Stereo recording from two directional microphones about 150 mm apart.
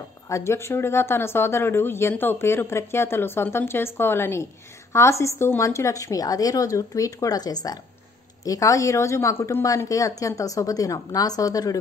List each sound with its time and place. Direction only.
0.3 s a woman's voice: 20° left (ahead or behind)